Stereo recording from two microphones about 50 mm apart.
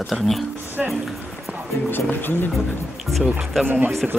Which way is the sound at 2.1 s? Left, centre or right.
Left.